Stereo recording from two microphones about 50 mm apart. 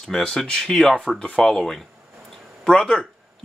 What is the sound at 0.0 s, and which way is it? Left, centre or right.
Speech, centre.